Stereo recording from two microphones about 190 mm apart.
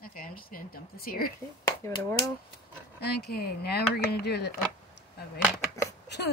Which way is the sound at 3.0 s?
60° left (ahead or behind).